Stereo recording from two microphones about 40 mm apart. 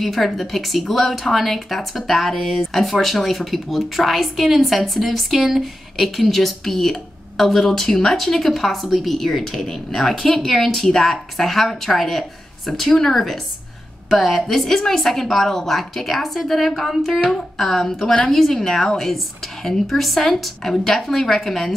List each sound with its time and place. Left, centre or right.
0.0 s speech: centre